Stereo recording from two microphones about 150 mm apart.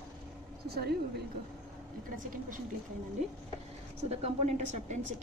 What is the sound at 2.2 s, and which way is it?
Speech, 60° right (ahead or behind).